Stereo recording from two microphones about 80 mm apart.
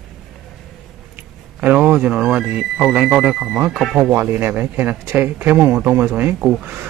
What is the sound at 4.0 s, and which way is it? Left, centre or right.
Speech, right.